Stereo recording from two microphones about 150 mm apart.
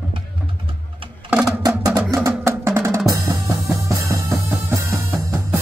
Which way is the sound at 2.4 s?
20° right (ahead or behind).